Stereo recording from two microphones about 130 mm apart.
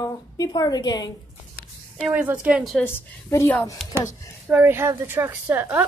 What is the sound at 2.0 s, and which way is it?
Speech, 10° right (ahead or behind).